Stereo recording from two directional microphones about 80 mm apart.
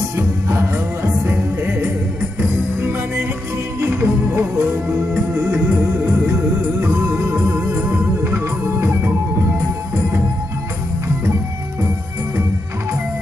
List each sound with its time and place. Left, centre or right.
0.5 s music: right
3.8 s music: right